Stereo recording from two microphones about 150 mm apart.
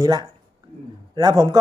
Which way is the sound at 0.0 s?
25° right (ahead or behind).